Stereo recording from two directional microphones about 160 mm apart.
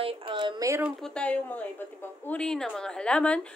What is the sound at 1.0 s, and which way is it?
A woman's voice, 5° left (ahead or behind).